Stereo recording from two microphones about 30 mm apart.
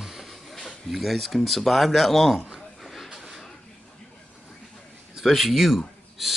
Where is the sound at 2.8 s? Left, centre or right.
Centre.